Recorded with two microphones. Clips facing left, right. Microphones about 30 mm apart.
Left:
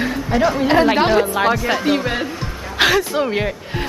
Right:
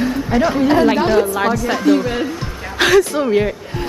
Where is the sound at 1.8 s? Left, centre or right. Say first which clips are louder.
Right 4 dB; left.